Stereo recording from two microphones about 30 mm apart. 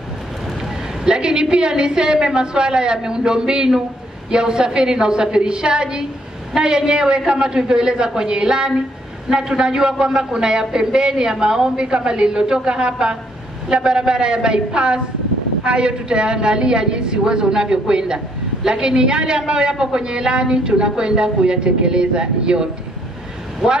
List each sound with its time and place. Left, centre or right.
1.0 s speech: right
23.6 s speech: centre